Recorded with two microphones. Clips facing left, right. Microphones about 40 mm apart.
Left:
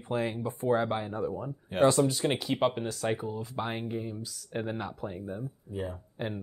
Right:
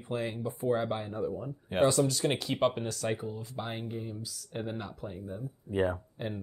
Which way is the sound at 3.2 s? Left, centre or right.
Left.